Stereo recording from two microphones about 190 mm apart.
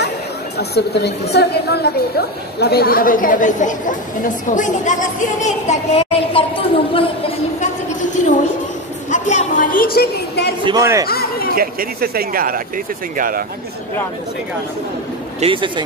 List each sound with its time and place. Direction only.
0.6 s a woman's voice: 60° left (ahead or behind); by 7.1 s 30° left (ahead or behind)
7.6 s a woman's voice: 40° left (ahead or behind); by 10.5 s 55° left (ahead or behind)
10.6 s a man's voice: 20° right (ahead or behind)
11.1 s speech: 55° left (ahead or behind)
11.5 s speech: 50° right (ahead or behind)
15.4 s speech: 25° right (ahead or behind)